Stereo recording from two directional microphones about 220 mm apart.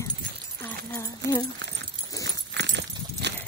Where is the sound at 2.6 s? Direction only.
50° right (ahead or behind).